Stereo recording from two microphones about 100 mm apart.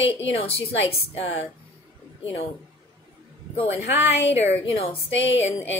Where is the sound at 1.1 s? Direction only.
85° left.